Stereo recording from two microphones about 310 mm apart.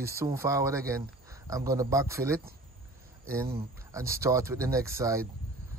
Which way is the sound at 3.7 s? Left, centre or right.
Centre.